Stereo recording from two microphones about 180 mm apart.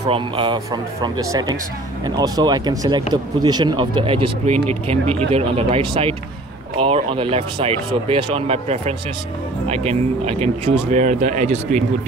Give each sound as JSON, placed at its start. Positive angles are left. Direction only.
{"t": 0.0, "sound": "speech", "side_deg": -25}